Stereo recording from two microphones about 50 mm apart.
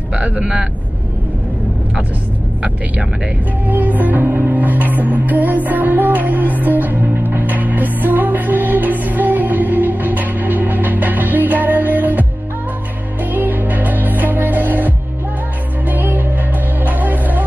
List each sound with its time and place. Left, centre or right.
0.1 s speech: centre
3.6 s music: right
15.9 s music: right